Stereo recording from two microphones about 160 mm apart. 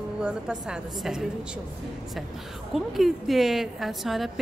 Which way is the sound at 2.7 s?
Centre (ahead or behind).